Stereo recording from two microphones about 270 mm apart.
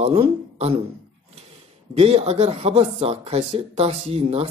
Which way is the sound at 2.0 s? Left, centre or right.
Right.